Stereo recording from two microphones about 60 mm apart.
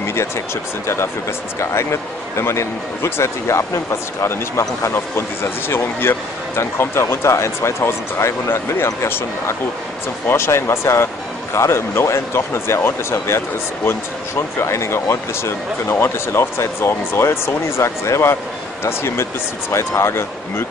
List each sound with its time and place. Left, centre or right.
0.0 s a sound: left
1.6 s speech: left
14.6 s speech: left